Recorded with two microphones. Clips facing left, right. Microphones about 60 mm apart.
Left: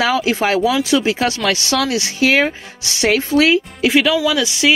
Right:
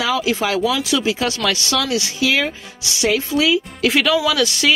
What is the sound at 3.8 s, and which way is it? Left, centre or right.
Speech, centre.